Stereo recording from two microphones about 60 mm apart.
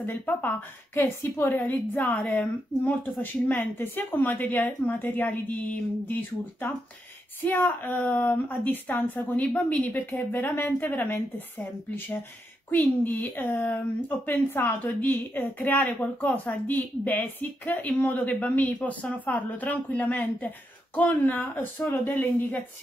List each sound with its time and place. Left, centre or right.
0.1 s a woman's voice: left
7.4 s a woman's voice: left